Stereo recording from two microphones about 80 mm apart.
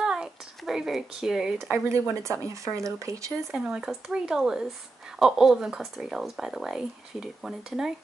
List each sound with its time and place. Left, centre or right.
0.0 s a sound: centre
1.9 s speech: right
3.5 s speech: centre